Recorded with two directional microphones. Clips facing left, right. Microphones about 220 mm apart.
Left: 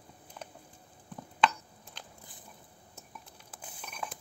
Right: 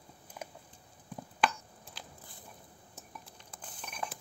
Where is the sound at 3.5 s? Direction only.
5° left (ahead or behind).